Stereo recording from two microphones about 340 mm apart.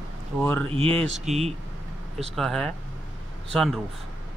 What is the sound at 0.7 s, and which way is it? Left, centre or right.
Speech, centre.